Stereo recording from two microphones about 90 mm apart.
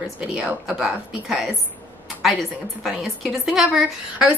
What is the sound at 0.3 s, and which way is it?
A woman's voice, 10° right (ahead or behind).